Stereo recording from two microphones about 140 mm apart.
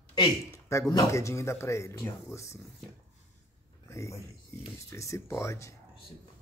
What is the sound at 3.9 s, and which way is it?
Speech, 20° left (ahead or behind).